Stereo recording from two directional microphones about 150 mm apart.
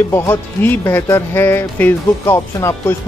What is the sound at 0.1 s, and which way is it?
Speech, 15° left (ahead or behind).